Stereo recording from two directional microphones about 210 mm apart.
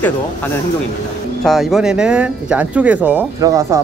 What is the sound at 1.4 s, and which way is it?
Speech, centre (ahead or behind).